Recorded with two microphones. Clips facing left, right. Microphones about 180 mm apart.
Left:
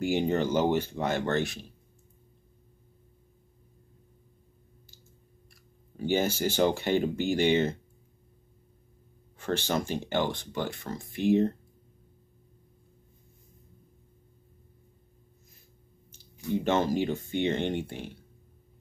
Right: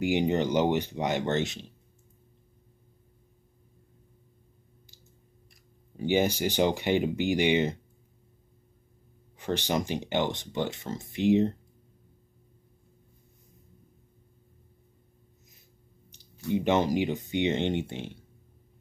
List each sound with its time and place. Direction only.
0.0 s speech: 15° right (ahead or behind)
5.5 s speech: 20° right (ahead or behind)
9.4 s speech: 15° right (ahead or behind)
16.4 s speech: 15° right (ahead or behind)